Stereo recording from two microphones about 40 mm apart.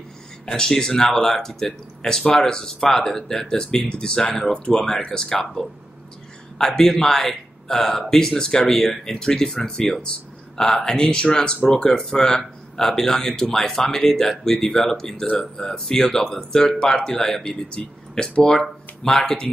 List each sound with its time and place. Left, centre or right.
0.5 s speech: centre
5.4 s speech: centre